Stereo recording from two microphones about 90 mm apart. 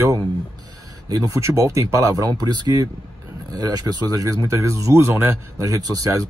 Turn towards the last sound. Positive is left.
turn(degrees=-40)  # may be behind; listen again after turning